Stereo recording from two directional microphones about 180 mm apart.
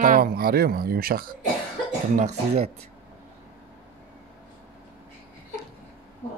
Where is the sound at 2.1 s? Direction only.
40° right (ahead or behind).